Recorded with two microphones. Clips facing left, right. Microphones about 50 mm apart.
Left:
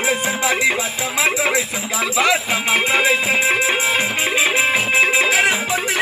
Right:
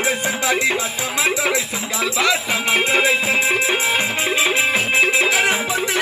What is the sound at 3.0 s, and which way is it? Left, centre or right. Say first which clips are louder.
Music: left 1 dB; centre.